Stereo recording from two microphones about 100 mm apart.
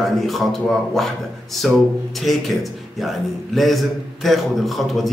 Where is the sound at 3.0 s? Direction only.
Centre (ahead or behind).